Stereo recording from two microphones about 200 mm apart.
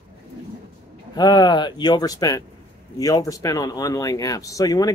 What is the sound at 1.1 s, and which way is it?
Speech, 20° left (ahead or behind).